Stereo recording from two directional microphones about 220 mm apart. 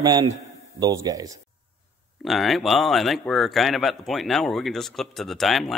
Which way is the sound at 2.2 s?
Centre (ahead or behind).